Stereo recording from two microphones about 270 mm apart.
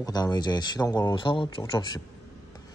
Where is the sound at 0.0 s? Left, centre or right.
Centre.